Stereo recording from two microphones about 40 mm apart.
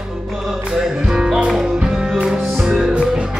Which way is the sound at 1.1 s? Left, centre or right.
Centre.